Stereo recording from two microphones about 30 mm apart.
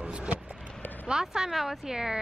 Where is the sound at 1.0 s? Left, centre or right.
Right.